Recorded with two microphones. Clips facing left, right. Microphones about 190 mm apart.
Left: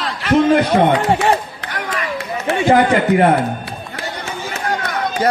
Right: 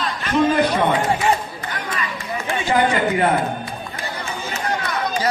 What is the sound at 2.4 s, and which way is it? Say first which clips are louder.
Speech: left 6 dB; 55° left (ahead or behind).